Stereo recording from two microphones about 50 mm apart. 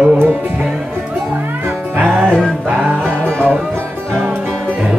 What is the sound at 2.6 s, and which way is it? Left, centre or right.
Music, right.